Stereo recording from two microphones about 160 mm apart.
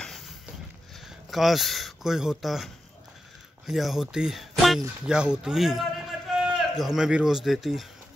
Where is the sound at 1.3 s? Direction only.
Centre (ahead or behind).